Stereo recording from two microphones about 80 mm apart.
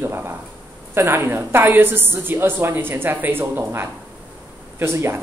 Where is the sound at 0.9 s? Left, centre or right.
Right.